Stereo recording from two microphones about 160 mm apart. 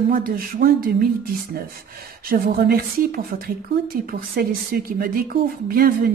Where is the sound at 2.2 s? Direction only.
65° right (ahead or behind).